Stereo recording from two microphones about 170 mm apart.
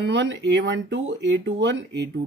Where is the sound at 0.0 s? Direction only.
90° right.